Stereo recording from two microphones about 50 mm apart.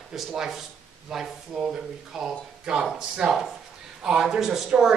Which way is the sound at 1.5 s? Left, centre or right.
Centre.